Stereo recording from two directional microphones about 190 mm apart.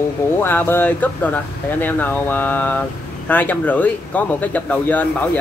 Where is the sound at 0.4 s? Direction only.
10° left (ahead or behind).